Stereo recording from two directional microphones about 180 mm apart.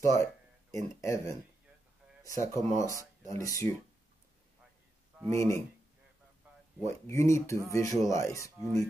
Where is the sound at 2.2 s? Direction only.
15° left (ahead or behind).